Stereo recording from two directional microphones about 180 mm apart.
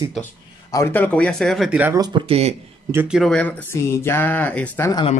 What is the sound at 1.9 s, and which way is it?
Speech, 25° right (ahead or behind).